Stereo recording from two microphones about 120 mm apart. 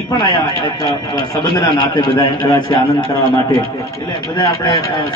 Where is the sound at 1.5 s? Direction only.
35° left (ahead or behind).